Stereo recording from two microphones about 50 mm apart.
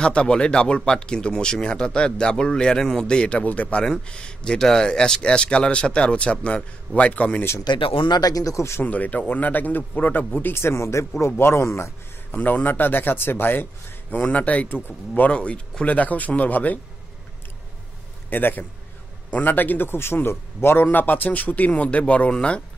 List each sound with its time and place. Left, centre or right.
0.0 s speech: centre
3.8 s speech: centre; by 7.4 s left
8.5 s speech: left
8.8 s speech: left
10.5 s speech: left
12.4 s a man's voice: left
14.1 s speech: left
15.3 s speech: left
18.3 s a man's voice: left
20.8 s speech: left